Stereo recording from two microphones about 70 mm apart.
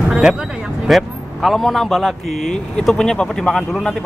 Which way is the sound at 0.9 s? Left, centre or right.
Centre.